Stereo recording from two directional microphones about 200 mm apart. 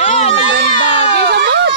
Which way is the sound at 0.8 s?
60° right (ahead or behind).